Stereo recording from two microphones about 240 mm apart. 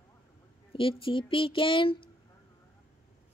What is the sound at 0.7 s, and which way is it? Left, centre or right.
Speech, left.